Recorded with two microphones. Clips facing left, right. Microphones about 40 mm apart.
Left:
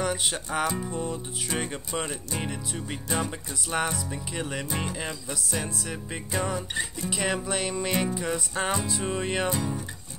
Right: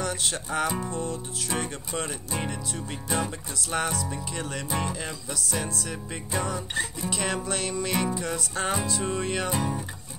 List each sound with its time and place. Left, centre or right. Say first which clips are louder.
0.0 s music: left 2 dB; centre
1.5 s speech: even; centre
2.0 s music: right 1 dB; centre
9.5 s speech: right 1 dB; centre